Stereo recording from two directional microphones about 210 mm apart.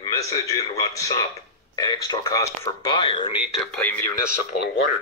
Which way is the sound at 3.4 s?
Centre (ahead or behind).